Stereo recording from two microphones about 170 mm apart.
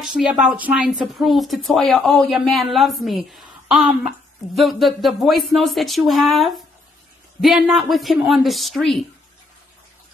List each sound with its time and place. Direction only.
0.0 s speech: 5° right (ahead or behind)